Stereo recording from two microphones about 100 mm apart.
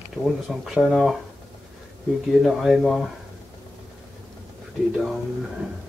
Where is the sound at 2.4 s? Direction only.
5° right (ahead or behind).